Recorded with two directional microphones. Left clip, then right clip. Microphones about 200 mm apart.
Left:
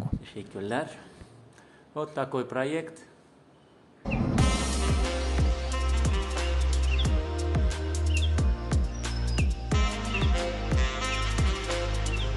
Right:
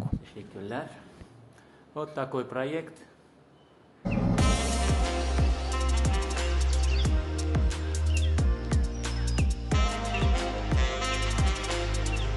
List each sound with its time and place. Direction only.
0.2 s speech: 25° left (ahead or behind)
2.0 s a man's voice: 15° left (ahead or behind)
4.1 s music: centre (ahead or behind)